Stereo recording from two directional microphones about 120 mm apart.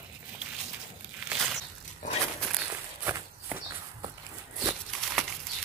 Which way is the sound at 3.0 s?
20° right (ahead or behind).